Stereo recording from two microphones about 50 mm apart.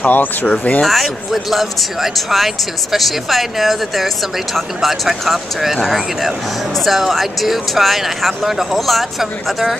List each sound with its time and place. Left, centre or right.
0.0 s speech: left
0.8 s speech: centre